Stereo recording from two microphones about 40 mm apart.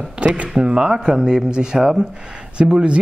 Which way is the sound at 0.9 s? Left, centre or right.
Centre.